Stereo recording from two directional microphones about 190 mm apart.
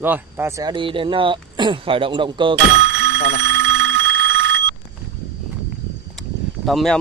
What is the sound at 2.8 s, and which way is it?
Telephone bell ringing, 70° right (ahead or behind).